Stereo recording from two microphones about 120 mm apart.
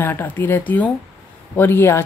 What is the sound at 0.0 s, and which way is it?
Speech, 15° left (ahead or behind).